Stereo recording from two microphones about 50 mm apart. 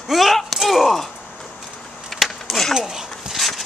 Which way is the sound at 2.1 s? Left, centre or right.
Centre.